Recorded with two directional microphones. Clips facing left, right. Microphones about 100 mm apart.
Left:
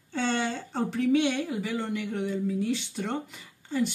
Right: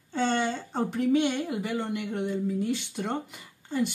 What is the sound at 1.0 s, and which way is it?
Speech, 40° right (ahead or behind).